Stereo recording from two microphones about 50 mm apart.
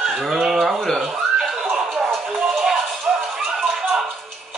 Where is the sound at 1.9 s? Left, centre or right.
Centre.